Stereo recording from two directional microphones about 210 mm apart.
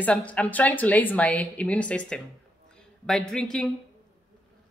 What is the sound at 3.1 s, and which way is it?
Speech, centre (ahead or behind).